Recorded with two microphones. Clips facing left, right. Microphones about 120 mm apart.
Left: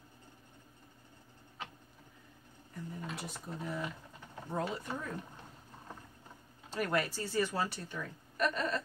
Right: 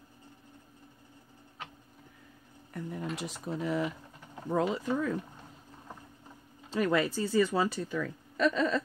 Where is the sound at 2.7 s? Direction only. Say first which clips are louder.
Right 6 dB; 85° right.